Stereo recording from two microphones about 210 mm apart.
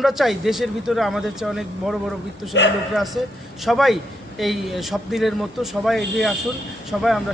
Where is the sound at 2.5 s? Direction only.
55° left (ahead or behind).